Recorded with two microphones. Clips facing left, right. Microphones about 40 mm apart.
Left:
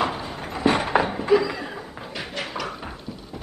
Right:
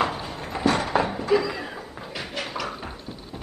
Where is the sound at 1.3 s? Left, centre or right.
Centre.